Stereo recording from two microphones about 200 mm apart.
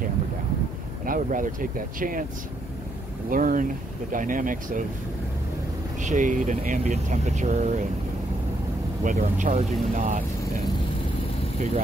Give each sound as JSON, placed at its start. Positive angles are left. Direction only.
{"t": 1.0, "sound": "speech", "side_deg": -45}
{"t": 3.3, "sound": "speech", "side_deg": -40}
{"t": 5.9, "sound": "speech", "side_deg": -40}
{"t": 9.0, "sound": "speech", "side_deg": -40}